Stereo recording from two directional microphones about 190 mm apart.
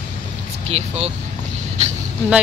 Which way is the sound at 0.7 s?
35° right (ahead or behind).